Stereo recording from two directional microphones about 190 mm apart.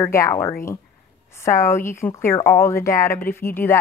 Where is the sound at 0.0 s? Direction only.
15° left (ahead or behind).